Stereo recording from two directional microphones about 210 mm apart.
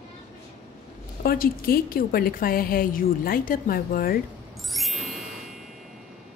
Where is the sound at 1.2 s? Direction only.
45° left (ahead or behind).